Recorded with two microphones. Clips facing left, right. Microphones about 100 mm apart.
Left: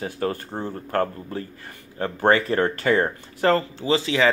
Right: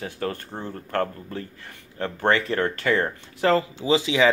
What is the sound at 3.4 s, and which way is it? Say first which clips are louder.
Speech: left 1 dB; centre (ahead or behind).